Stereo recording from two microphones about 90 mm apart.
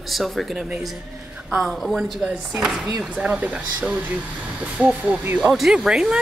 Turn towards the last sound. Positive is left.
turn(degrees=-5)  # may be behind; listen again after turning